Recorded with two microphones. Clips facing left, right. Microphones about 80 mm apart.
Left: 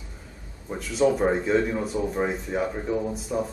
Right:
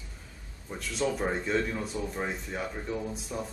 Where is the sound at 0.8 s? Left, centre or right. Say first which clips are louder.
Left 8 dB; centre.